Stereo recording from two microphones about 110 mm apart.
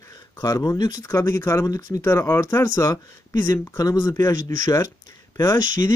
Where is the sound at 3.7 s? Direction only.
30° left (ahead or behind).